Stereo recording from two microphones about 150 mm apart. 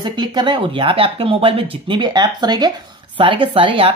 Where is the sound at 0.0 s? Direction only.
30° right (ahead or behind).